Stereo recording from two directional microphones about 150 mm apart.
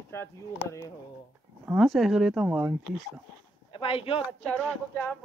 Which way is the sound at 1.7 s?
Centre (ahead or behind).